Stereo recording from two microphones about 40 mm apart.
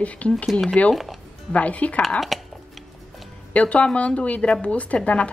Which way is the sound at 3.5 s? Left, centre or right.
Left.